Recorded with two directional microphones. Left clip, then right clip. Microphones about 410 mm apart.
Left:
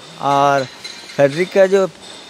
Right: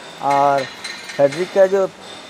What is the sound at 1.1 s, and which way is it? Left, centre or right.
Speech, left.